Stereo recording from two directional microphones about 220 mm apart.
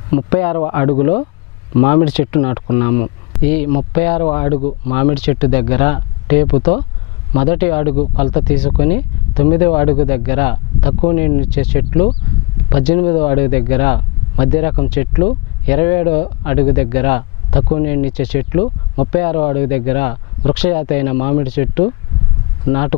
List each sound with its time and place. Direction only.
0.1 s speech: 15° left (ahead or behind)
4.6 s speech: 30° left (ahead or behind)
5.1 s speech: 10° left (ahead or behind)